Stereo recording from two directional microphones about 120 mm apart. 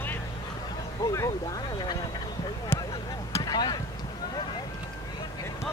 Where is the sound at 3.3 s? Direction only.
30° left (ahead or behind).